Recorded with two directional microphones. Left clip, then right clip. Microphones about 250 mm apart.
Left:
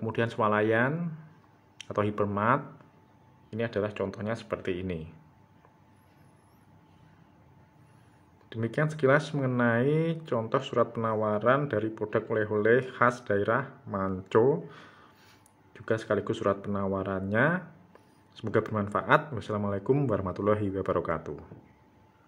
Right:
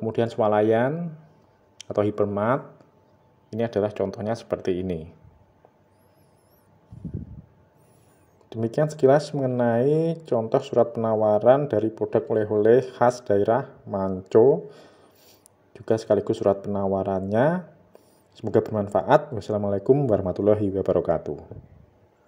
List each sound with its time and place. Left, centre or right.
0.1 s speech: centre
2.3 s speech: centre
3.5 s speech: right
8.5 s speech: right
11.0 s speech: centre
11.2 s speech: right
13.8 s speech: centre